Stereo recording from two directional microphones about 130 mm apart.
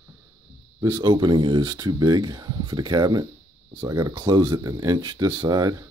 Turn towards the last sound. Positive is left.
turn(degrees=-30)  # may be behind; listen again after turning